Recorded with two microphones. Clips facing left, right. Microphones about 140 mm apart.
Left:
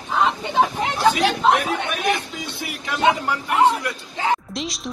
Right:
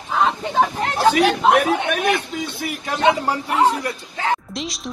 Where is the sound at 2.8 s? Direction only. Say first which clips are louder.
Right 1 dB; 35° right (ahead or behind).